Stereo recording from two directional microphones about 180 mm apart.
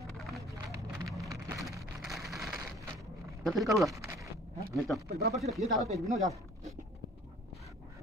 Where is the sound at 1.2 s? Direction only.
20° right (ahead or behind).